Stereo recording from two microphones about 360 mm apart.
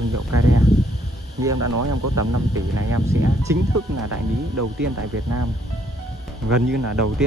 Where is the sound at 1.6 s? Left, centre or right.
Right.